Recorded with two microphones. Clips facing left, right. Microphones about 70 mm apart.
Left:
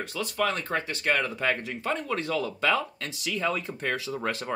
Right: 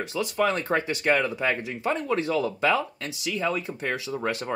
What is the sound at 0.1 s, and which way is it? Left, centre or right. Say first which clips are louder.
Speech: right 4 dB; centre.